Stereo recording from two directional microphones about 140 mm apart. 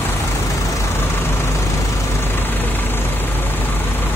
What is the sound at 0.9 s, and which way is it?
Vehicle, 15° left (ahead or behind).